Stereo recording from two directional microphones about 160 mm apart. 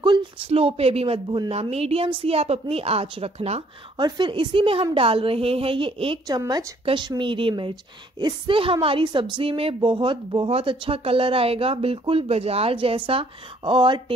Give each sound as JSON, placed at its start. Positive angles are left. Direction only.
{"t": 0.0, "sound": "a woman's voice", "side_deg": -30}